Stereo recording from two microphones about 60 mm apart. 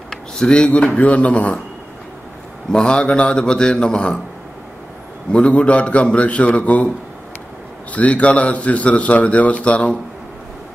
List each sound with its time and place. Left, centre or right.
0.1 s a man's voice: centre
2.7 s a man's voice: centre
5.3 s a man's voice: centre
7.9 s a man's voice: left